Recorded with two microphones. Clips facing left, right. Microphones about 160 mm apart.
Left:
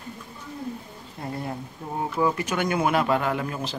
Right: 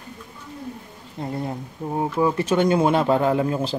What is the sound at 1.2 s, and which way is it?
Speech, 25° right (ahead or behind).